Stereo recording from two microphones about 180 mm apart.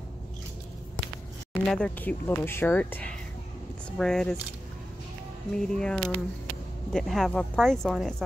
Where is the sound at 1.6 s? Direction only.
5° left (ahead or behind).